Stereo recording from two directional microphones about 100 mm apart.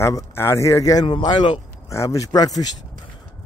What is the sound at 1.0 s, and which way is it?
Speech, 50° left (ahead or behind).